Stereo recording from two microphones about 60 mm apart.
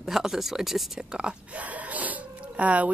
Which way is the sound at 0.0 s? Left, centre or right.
Centre.